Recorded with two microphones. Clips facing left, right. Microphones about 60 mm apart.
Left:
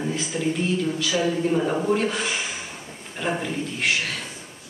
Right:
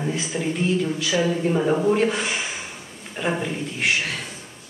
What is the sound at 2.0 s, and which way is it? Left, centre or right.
A man's voice, right.